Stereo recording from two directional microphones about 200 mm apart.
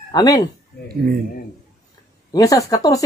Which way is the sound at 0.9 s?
50° right (ahead or behind).